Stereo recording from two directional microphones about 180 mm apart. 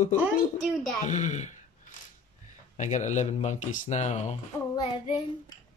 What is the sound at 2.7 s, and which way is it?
Speech, 40° left (ahead or behind).